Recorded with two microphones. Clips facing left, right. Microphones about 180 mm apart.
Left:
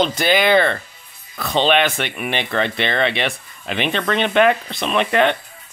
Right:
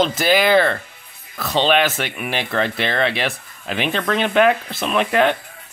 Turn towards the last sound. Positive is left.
turn(degrees=-5)  # may be behind; listen again after turning